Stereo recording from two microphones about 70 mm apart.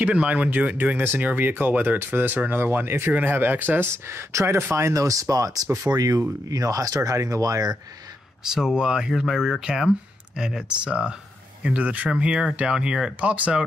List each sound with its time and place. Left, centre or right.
0.0 s speech: centre; by 4.6 s right
4.9 s speech: right
8.5 s speech: centre